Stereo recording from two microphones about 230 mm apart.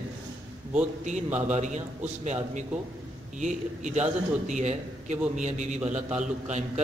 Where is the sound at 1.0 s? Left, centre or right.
Right.